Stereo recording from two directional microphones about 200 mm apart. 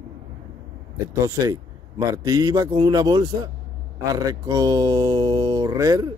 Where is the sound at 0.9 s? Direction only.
15° right (ahead or behind).